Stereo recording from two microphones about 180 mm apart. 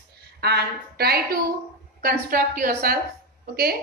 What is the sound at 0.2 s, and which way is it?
A woman's voice, 65° right (ahead or behind).